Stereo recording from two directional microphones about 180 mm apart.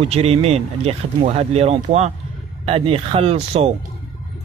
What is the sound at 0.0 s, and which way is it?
Speech, 35° right (ahead or behind).